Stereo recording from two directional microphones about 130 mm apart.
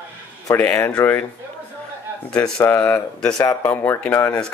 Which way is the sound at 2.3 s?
10° left (ahead or behind).